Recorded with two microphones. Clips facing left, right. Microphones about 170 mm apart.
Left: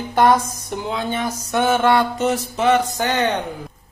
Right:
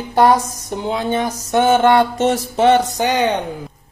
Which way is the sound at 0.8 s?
25° right (ahead or behind).